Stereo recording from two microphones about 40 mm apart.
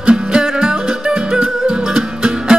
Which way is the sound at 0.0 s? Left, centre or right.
Centre.